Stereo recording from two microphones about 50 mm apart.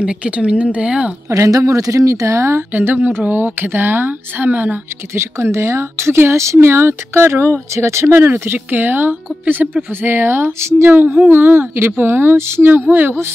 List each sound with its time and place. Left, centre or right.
0.0 s speech: right
1.3 s speech: right
2.7 s speech: right
5.1 s speech: right
6.3 s speech: right
6.6 s speech: right
7.7 s speech: right
8.1 s speech: right